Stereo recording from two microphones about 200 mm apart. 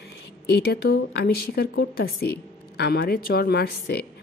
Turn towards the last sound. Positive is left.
turn(degrees=55)  # may be behind; listen again after turning